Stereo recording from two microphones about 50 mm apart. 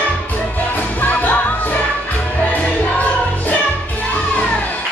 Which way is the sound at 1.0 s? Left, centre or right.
Left.